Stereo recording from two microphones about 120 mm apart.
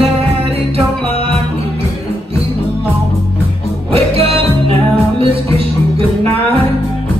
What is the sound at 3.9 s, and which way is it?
Music, 50° right (ahead or behind).